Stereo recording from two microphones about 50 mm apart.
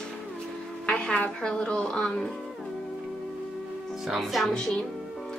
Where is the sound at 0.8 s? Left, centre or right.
Centre.